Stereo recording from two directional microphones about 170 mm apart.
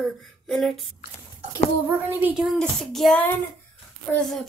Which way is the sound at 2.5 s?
Centre (ahead or behind).